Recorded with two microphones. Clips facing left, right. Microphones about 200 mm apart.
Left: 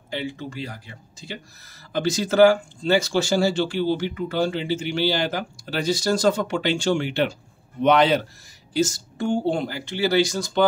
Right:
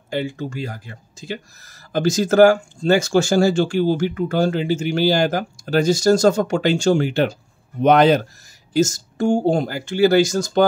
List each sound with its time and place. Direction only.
0.1 s speech: 45° right (ahead or behind)